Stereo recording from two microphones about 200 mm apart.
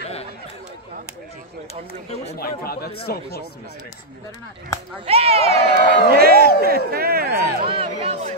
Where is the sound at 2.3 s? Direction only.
50° left (ahead or behind).